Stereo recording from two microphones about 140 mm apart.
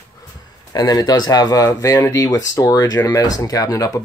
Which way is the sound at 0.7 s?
30° left (ahead or behind).